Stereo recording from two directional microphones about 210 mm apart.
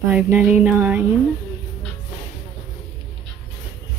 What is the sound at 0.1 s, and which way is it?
Speech, 5° right (ahead or behind).